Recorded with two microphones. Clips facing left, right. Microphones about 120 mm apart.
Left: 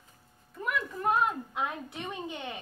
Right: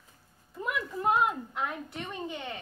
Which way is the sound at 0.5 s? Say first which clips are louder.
Even; 20° right (ahead or behind).